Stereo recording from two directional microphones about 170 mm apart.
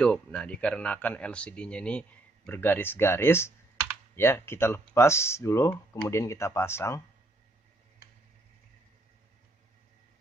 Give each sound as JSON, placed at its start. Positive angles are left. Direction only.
{"t": 0.0, "sound": "speech", "side_deg": 5}